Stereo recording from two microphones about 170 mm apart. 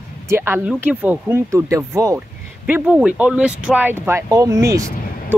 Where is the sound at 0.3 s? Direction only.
15° right (ahead or behind).